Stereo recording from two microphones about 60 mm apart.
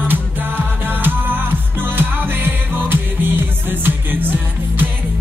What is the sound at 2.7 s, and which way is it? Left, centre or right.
Music, right.